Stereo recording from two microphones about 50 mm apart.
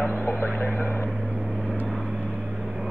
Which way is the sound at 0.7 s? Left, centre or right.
Left.